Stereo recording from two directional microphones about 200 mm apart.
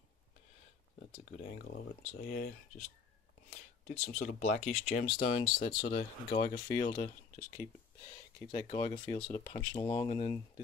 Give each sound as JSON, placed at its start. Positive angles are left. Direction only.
{"t": 1.1, "sound": "speech", "side_deg": 45}
{"t": 3.8, "sound": "speech", "side_deg": 35}
{"t": 5.2, "sound": "speech", "side_deg": 30}
{"t": 5.9, "sound": "speech", "side_deg": 25}
{"t": 6.4, "sound": "speech", "side_deg": 45}
{"t": 8.6, "sound": "speech", "side_deg": 35}